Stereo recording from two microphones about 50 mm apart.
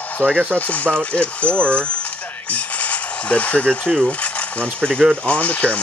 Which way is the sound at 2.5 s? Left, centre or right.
Left.